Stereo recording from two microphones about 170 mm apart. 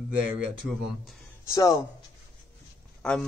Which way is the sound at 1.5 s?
20° left (ahead or behind).